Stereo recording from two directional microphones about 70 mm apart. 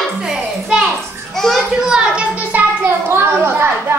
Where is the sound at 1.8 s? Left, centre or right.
Centre.